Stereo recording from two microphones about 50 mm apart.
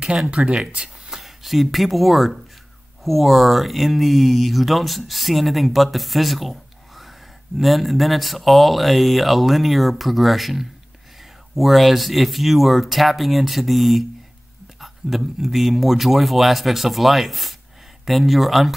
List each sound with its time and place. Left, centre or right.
0.0 s speech: centre
1.1 s speech: centre